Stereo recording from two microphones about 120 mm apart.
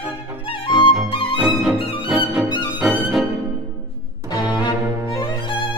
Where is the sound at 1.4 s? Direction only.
5° right (ahead or behind).